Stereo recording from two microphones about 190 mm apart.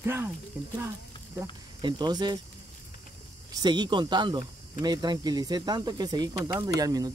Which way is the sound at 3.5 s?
20° right (ahead or behind).